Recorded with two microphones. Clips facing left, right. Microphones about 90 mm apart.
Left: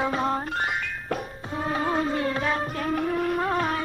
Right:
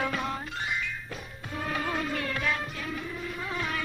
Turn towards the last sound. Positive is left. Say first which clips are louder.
# left 9 dB
turn(degrees=45)  # may be behind; listen again after turning